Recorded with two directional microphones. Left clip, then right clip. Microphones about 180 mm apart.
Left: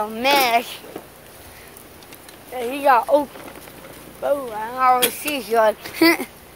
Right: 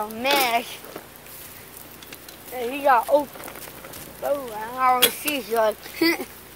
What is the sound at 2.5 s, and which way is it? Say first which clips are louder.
Speech: left 3 dB; 25° left (ahead or behind).